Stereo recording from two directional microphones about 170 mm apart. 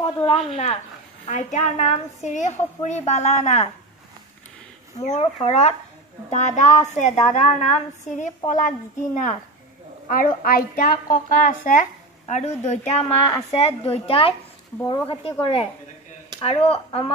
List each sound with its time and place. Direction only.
0.0 s speech: 25° left (ahead or behind)
1.2 s a woman's voice: 45° left (ahead or behind)
5.0 s a woman's voice: 40° left (ahead or behind)
10.0 s a woman's voice: 55° left (ahead or behind); by 17.0 s 35° left (ahead or behind)